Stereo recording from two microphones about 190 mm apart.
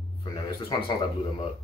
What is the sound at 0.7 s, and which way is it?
Speech, 25° left (ahead or behind).